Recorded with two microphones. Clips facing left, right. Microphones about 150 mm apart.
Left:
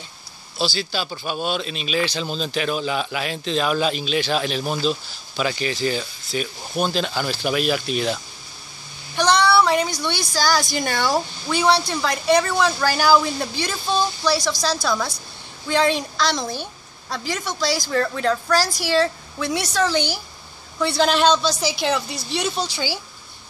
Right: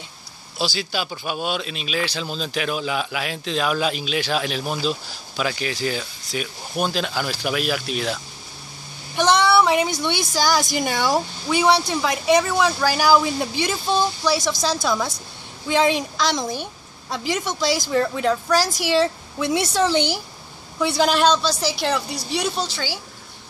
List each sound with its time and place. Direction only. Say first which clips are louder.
0.6 s a man's voice: left 1 dB; 10° right (ahead or behind)
9.1 s a woman's voice: even; 20° right (ahead or behind)
21.1 s a man's voice: even; 5° right (ahead or behind)